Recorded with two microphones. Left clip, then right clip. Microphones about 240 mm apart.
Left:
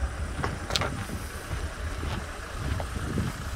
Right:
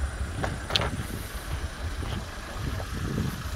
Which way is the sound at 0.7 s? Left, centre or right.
Centre.